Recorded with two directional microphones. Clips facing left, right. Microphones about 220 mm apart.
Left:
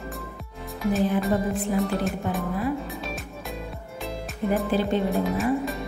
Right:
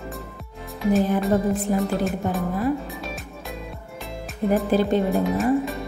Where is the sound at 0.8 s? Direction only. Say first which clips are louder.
Right 3 dB; centre (ahead or behind).